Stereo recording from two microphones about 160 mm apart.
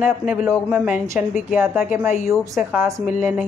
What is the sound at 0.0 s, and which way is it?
A woman's voice, 10° right (ahead or behind).